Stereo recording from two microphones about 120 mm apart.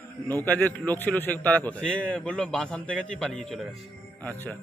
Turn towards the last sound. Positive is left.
turn(degrees=15)  # may be behind; listen again after turning